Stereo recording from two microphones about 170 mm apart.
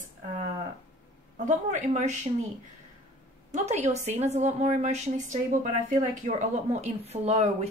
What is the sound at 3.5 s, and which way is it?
Speech, 40° right (ahead or behind).